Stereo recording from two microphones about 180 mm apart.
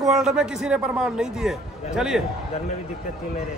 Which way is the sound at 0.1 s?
5° right (ahead or behind).